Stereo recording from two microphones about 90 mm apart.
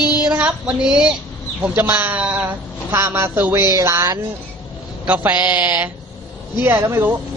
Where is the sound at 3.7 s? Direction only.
35° right (ahead or behind).